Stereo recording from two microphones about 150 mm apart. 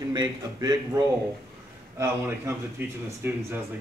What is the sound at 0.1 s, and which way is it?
Speech, 30° right (ahead or behind).